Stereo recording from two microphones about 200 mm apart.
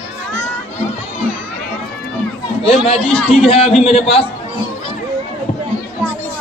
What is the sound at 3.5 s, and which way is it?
Speech, 30° left (ahead or behind).